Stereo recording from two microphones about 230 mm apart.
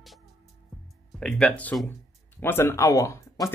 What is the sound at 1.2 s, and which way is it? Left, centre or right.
Speech, centre.